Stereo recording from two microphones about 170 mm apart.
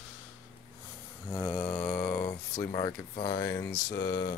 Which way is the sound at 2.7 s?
35° left (ahead or behind).